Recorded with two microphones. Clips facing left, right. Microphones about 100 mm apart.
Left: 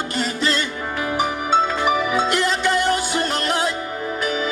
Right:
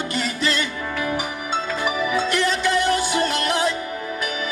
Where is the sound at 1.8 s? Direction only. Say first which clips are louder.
Left 3 dB; 45° left (ahead or behind).